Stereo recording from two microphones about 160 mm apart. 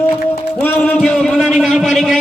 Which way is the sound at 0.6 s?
10° left (ahead or behind).